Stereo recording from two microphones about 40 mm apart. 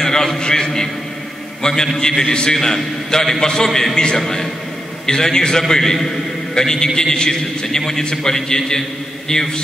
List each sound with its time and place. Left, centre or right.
0.0 s a sound: centre
1.6 s a man's voice: centre
3.9 s a man's voice: left
4.2 s a man's voice: centre